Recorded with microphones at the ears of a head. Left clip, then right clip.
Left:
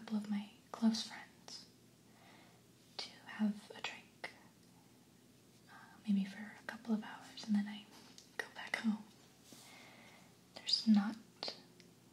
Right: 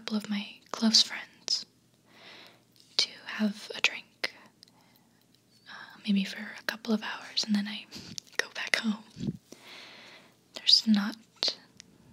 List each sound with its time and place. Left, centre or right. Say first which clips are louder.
0.0 s speech: right 9 dB; right
2.1 s a sound: right 13 dB; right
3.0 s whispering: right 14 dB; right
5.7 s whispering: right 9 dB; right